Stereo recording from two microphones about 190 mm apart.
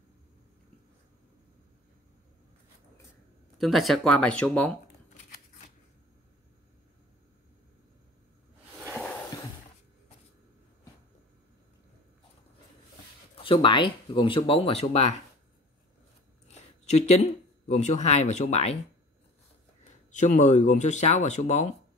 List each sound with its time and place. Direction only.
3.5 s speech: centre (ahead or behind)
13.4 s speech: 25° left (ahead or behind)
16.5 s speech: 35° left (ahead or behind)
20.1 s speech: 40° left (ahead or behind)